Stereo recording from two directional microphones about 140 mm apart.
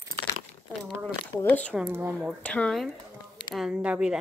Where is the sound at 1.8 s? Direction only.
15° right (ahead or behind).